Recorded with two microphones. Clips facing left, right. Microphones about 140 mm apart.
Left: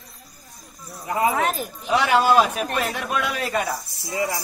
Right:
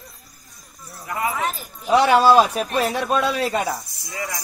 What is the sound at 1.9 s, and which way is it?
A man's voice, 35° right (ahead or behind).